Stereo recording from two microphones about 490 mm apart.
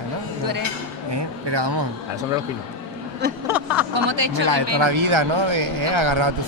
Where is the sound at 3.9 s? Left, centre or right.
Right.